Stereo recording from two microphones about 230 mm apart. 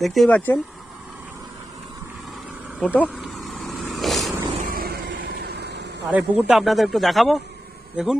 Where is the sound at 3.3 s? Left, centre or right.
Centre.